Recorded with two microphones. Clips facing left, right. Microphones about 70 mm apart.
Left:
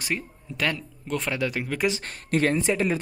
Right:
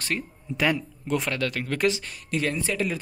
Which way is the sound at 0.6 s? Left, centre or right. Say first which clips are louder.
Right 3 dB; centre.